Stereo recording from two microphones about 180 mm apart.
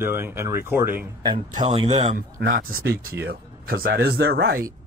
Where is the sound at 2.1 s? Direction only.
55° right (ahead or behind).